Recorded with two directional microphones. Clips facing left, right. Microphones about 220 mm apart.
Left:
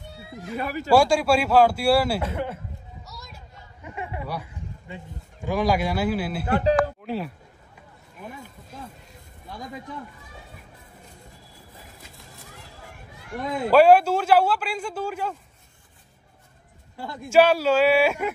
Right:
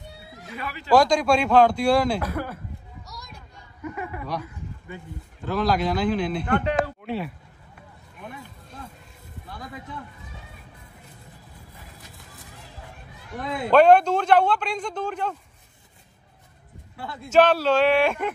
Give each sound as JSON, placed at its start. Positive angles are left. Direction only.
{"t": 0.6, "sound": "speech", "side_deg": 45}
{"t": 0.9, "sound": "speech", "side_deg": 10}
{"t": 2.2, "sound": "a man's voice", "side_deg": 25}
{"t": 3.1, "sound": "a sound", "side_deg": 5}
{"t": 3.3, "sound": "chatter", "side_deg": 25}
{"t": 5.4, "sound": "speech", "side_deg": 10}
{"t": 13.7, "sound": "speech", "side_deg": 5}
{"t": 16.9, "sound": "speech", "side_deg": 15}